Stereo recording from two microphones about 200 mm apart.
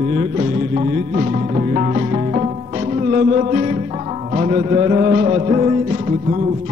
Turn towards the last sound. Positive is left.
turn(degrees=-30)  # may be behind; listen again after turning